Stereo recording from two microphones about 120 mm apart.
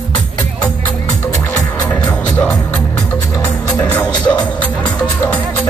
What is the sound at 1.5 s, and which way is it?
Music, 30° left (ahead or behind).